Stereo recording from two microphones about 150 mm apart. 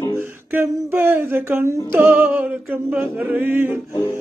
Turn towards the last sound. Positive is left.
turn(degrees=-15)  # may be behind; listen again after turning